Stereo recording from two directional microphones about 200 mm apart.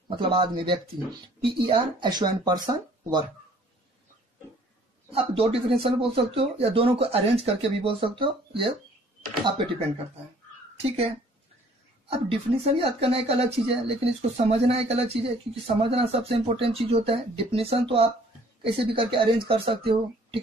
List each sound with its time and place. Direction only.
0.1 s speech: 25° right (ahead or behind)
5.1 s speech: 30° right (ahead or behind)
10.8 s speech: 30° right (ahead or behind)
12.1 s speech: 30° right (ahead or behind)